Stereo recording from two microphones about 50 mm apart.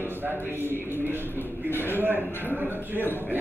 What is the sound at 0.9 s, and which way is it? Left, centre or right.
Speech, right.